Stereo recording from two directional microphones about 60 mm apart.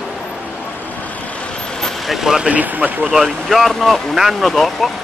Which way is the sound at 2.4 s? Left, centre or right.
Right.